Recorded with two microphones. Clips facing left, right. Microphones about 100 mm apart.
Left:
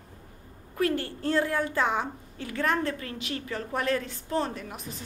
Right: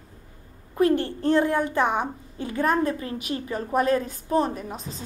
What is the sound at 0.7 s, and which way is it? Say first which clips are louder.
A woman's voice: right 6 dB; 25° right (ahead or behind).